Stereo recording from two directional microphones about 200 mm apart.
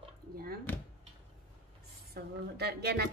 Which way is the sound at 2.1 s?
50° right (ahead or behind).